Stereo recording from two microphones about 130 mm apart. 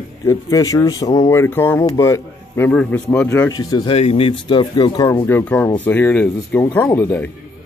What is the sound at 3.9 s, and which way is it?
Speech, 50° left (ahead or behind).